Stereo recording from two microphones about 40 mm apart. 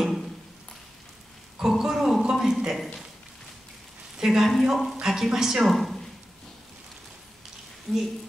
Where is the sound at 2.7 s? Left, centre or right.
Centre.